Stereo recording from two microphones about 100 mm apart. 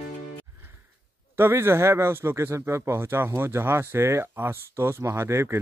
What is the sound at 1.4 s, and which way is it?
Speech, 25° right (ahead or behind).